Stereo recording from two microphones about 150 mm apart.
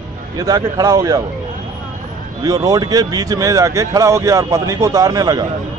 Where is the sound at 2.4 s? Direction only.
25° right (ahead or behind).